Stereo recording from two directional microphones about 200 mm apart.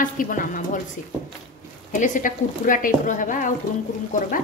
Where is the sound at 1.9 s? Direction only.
40° left (ahead or behind).